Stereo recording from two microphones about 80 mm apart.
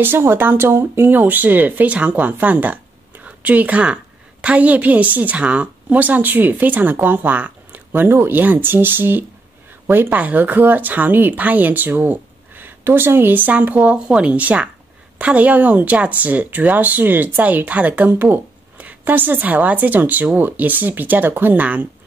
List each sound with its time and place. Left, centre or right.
0.0 s speech: right